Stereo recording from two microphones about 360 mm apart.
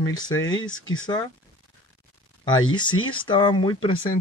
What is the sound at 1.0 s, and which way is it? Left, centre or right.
Speech, centre.